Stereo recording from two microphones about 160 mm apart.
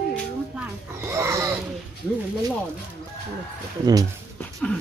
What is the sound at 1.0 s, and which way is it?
Speech, 15° right (ahead or behind).